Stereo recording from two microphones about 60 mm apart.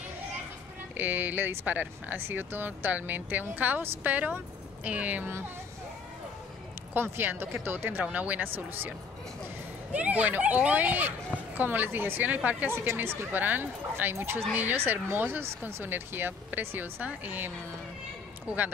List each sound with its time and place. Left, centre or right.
0.9 s speech: right
6.9 s speech: right
8.0 s speech: right
9.9 s speech: right
12.9 s speech: right